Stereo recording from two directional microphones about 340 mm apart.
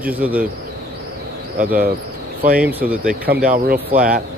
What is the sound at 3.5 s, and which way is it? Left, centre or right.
Speech, right.